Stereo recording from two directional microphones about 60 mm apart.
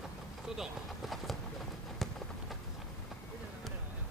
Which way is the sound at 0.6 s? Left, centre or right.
Centre.